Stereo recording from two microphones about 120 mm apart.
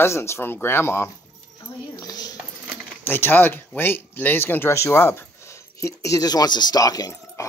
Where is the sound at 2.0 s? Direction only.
35° left (ahead or behind).